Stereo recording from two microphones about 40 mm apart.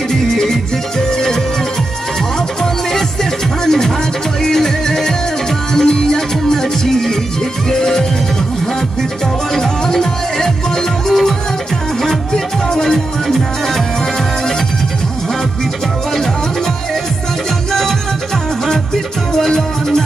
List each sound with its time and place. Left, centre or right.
0.1 s music: centre
3.6 s music: centre
9.6 s music: centre
12.7 s music: centre
19.3 s music: centre